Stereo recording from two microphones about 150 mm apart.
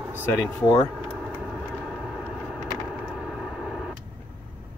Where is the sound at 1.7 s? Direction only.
5° left (ahead or behind).